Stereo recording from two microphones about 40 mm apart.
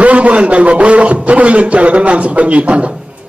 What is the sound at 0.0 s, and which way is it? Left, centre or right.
A man's voice, right.